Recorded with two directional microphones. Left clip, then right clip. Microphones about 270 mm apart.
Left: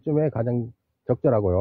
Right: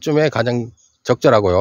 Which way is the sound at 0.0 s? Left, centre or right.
Centre.